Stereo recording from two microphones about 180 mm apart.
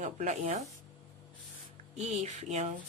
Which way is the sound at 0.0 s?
40° right (ahead or behind).